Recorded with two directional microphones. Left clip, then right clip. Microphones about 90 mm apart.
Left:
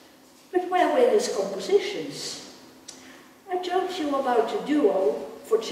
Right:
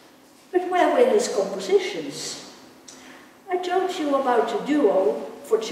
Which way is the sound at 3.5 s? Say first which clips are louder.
Right 3 dB; 15° right (ahead or behind).